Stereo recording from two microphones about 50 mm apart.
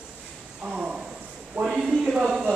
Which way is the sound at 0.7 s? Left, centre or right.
Centre.